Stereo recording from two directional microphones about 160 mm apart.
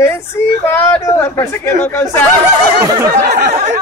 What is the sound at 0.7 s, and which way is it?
Speech, 15° left (ahead or behind).